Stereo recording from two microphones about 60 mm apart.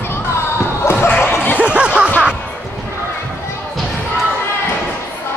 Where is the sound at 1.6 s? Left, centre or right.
Centre.